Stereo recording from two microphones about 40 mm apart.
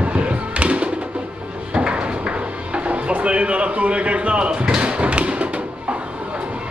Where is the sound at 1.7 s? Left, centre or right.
Right.